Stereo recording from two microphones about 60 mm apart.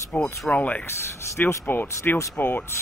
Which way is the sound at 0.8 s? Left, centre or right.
Left.